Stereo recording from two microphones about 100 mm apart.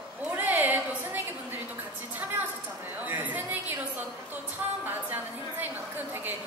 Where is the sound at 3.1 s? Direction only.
15° right (ahead or behind).